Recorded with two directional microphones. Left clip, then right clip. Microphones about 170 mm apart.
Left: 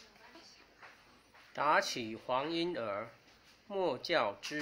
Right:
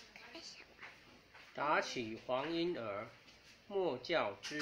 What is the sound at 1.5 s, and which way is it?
Speech, 60° left (ahead or behind).